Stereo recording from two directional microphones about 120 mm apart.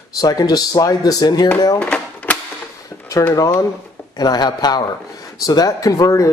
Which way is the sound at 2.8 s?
30° left (ahead or behind).